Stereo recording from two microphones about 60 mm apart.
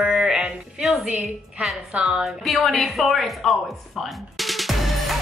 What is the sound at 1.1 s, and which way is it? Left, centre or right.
Speech, centre.